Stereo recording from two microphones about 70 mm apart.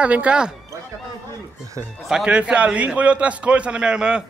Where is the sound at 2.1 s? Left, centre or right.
Centre.